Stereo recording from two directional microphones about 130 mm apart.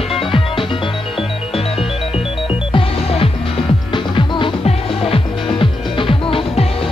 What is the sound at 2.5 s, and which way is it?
Music, 45° left (ahead or behind).